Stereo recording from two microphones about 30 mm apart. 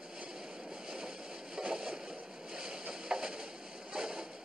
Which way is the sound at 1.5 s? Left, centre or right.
Right.